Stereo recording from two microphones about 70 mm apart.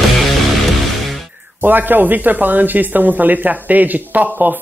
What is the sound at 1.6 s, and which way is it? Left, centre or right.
Speech, right.